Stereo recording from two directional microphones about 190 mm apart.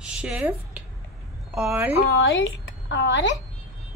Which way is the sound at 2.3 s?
70° left (ahead or behind).